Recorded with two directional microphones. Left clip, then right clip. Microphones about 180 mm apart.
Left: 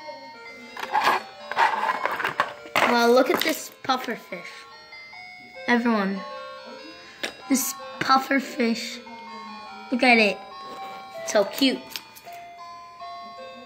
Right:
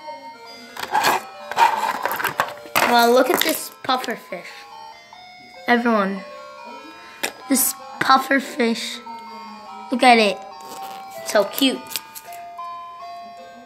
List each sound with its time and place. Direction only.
0.7 s music: 40° right (ahead or behind)
2.9 s speech: centre (ahead or behind)
5.7 s speech: 5° left (ahead or behind)
7.4 s speech: centre (ahead or behind)